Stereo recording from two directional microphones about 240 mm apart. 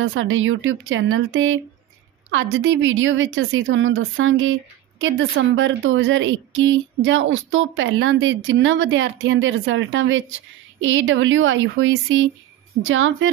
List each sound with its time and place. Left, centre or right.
0.0 s speech: right